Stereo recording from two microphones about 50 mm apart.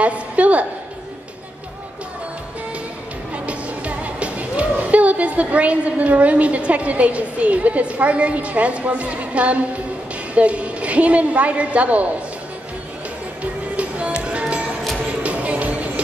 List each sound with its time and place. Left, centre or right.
0.0 s a woman's voice: right
3.4 s a woman's voice: right
13.4 s music: right